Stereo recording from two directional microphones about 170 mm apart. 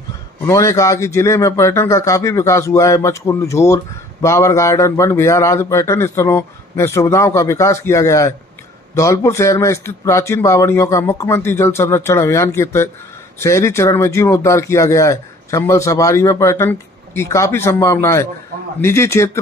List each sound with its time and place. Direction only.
0.5 s a man's voice: 15° left (ahead or behind)